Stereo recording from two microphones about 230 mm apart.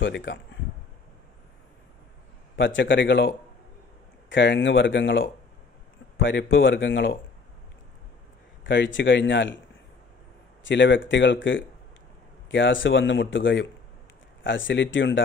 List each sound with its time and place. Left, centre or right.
0.0 s speech: left
2.5 s speech: left
8.6 s speech: left
10.6 s speech: left